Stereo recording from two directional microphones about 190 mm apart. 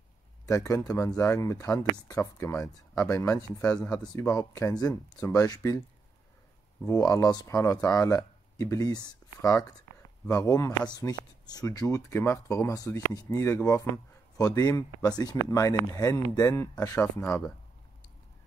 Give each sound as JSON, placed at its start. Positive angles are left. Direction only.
{"t": 0.5, "sound": "speech", "side_deg": 15}
{"t": 3.6, "sound": "speech", "side_deg": 5}
{"t": 3.9, "sound": "speech", "side_deg": 20}
{"t": 6.9, "sound": "speech", "side_deg": 20}